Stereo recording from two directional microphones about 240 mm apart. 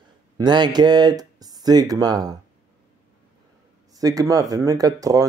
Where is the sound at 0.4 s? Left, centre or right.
Centre.